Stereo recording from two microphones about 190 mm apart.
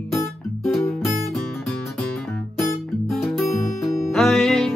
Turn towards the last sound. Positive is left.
turn(degrees=0)  # may be behind; listen again after turning